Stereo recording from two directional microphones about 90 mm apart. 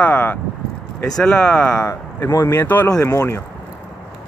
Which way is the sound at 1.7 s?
35° left (ahead or behind).